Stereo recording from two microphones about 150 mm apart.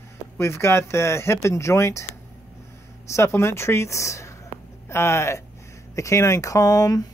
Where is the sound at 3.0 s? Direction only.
20° left (ahead or behind).